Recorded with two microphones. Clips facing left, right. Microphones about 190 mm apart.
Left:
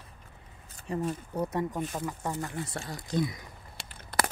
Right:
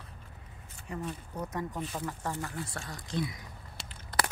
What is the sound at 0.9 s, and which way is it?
Speech, 30° left (ahead or behind).